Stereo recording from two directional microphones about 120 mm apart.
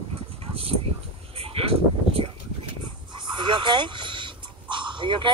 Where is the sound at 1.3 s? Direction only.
50° right (ahead or behind).